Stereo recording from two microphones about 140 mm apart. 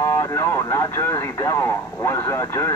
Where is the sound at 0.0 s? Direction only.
20° left (ahead or behind).